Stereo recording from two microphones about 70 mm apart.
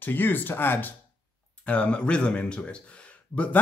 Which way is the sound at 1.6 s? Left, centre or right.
Centre.